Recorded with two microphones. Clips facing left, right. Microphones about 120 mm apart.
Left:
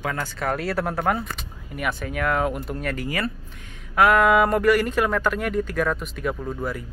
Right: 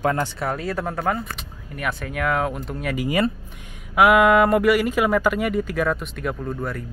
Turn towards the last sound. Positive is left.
turn(degrees=5)  # may be behind; listen again after turning